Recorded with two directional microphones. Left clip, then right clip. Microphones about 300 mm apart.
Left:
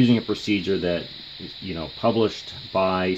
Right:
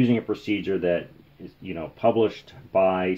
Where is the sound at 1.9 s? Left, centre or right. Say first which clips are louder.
Right 1 dB; centre.